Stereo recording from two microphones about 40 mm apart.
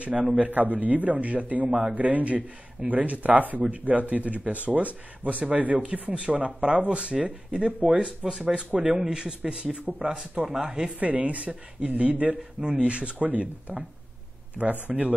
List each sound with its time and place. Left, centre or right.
0.0 s speech: right
0.5 s a man's voice: right
1.7 s speech: right
2.0 s speech: right; by 8.6 s centre
8.7 s speech: right
9.0 s speech: right
11.0 s speech: right
12.6 s speech: right
13.2 s a man's voice: right
14.6 s speech: centre
14.9 s speech: right